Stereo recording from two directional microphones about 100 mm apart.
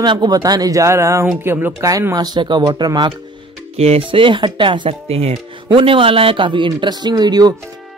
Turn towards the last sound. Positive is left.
turn(degrees=-45)  # may be behind; listen again after turning